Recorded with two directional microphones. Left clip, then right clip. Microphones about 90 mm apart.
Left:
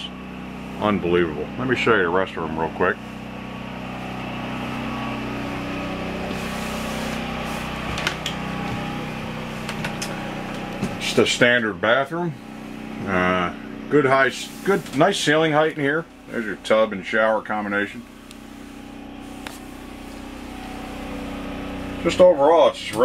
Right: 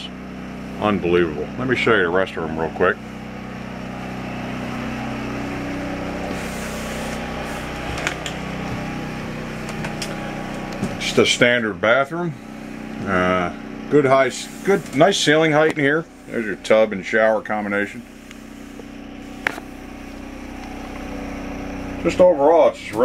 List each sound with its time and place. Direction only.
0.7 s speech: 5° right (ahead or behind)
11.1 s speech: 10° right (ahead or behind)
13.0 s vehicle: 15° right (ahead or behind)
13.9 s speech: 20° right (ahead or behind)
16.6 s speech: 15° right (ahead or behind)
22.0 s speech: 5° right (ahead or behind)
22.4 s speech: 15° right (ahead or behind)